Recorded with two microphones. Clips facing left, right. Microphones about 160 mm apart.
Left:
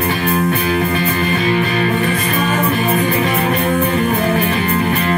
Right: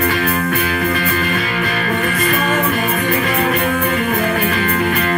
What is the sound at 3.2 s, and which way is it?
Music, 35° left (ahead or behind).